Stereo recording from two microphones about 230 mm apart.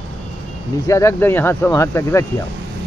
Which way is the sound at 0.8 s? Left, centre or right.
Centre.